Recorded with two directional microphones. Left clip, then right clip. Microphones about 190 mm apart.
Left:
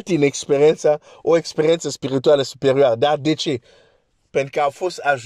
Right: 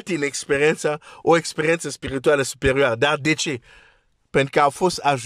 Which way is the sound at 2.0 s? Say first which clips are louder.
Left 4 dB; 40° right (ahead or behind).